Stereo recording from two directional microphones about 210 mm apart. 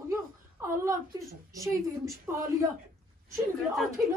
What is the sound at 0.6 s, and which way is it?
Speech, 15° right (ahead or behind).